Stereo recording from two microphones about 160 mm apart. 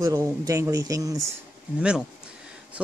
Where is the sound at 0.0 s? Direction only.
20° right (ahead or behind).